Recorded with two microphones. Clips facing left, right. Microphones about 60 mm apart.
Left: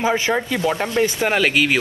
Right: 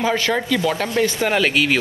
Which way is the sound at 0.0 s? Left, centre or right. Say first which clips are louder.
Even; centre.